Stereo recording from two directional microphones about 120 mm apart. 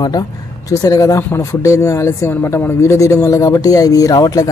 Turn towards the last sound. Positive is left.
turn(degrees=30)  # may be behind; listen again after turning